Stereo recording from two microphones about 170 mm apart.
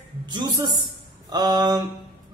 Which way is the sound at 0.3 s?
25° right (ahead or behind).